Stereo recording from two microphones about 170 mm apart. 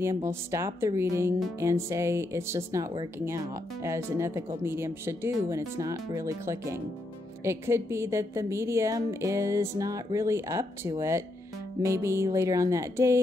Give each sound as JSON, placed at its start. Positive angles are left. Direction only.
{"t": 0.0, "sound": "speech", "side_deg": -15}